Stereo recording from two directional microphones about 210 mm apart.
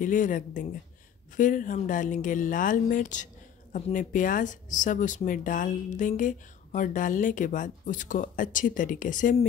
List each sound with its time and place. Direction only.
0.0 s speech: 40° left (ahead or behind)